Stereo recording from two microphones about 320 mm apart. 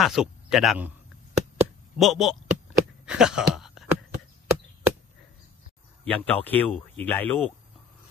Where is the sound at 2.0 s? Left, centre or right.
Centre.